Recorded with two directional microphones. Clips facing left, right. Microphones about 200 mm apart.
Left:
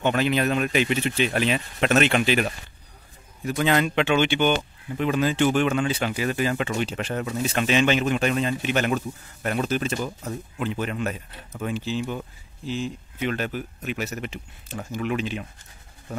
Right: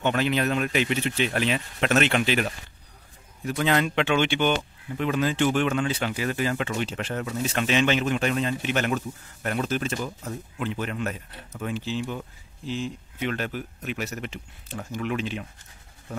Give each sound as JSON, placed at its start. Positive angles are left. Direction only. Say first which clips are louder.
{"t": 0.0, "sound": "speech", "louder": "left 2 dB", "side_deg": 15}